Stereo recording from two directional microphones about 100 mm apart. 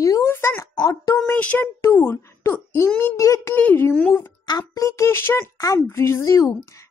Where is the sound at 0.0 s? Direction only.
30° left (ahead or behind).